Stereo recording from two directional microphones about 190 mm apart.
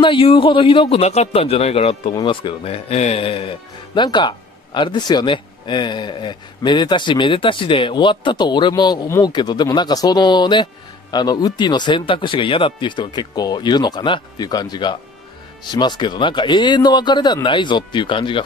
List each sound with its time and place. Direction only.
0.0 s a man's voice: 30° left (ahead or behind)